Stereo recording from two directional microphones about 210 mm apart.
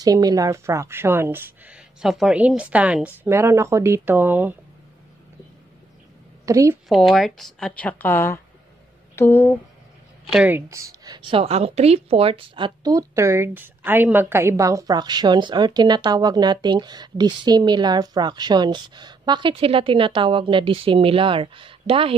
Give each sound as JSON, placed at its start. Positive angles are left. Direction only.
{"t": 0.0, "sound": "a woman's voice", "side_deg": -20}
{"t": 6.4, "sound": "a woman's voice", "side_deg": -15}
{"t": 6.9, "sound": "speech", "side_deg": 0}
{"t": 10.3, "sound": "a woman's voice", "side_deg": -5}